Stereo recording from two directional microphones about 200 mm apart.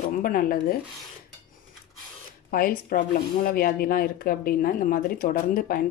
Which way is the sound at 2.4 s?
45° left (ahead or behind).